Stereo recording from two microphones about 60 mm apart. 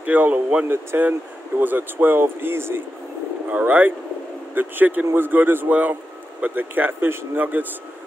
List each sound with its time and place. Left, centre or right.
0.0 s speech: right
3.4 s speech: right
7.3 s speech: right